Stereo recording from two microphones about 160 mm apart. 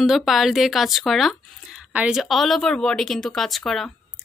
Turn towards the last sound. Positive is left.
turn(degrees=0)  # may be behind; listen again after turning